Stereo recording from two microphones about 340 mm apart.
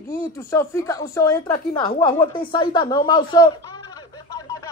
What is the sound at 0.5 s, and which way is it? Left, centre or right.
Speech, centre.